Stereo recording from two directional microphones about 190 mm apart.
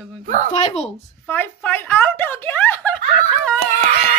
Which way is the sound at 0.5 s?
35° left (ahead or behind).